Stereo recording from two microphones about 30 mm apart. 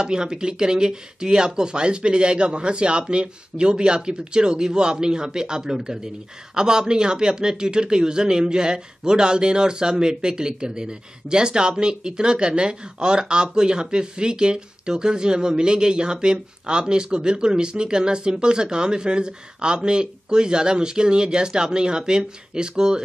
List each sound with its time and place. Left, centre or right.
0.0 s speech: right